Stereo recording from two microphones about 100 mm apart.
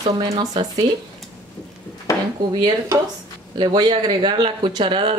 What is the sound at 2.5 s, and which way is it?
Speech, 55° right (ahead or behind).